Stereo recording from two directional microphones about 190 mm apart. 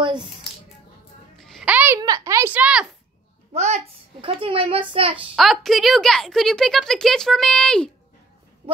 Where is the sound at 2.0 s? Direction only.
20° right (ahead or behind).